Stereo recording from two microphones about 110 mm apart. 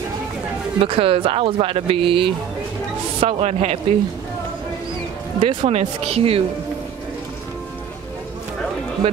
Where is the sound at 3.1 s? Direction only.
70° right (ahead or behind).